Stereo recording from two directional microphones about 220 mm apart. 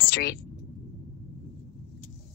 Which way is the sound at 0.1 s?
50° left (ahead or behind).